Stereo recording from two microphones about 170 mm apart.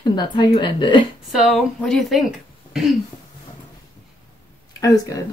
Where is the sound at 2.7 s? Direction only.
Centre (ahead or behind).